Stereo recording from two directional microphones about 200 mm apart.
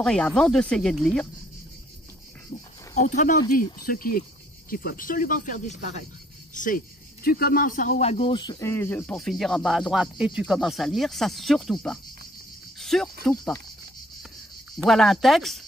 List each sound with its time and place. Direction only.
0.0 s speech: 5° left (ahead or behind)
2.9 s speech: 40° left (ahead or behind); by 13.1 s centre (ahead or behind)
14.8 s speech: centre (ahead or behind)